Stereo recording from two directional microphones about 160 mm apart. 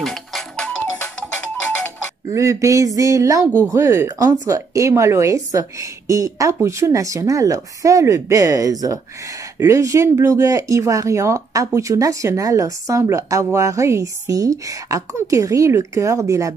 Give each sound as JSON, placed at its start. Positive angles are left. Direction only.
{"t": 0.0, "sound": "music", "side_deg": 0}
{"t": 2.2, "sound": "speech", "side_deg": -20}